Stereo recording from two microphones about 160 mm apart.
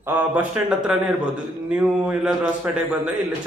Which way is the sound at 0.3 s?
5° right (ahead or behind).